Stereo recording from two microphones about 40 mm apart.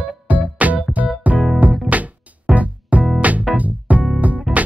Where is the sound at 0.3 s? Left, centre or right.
Right.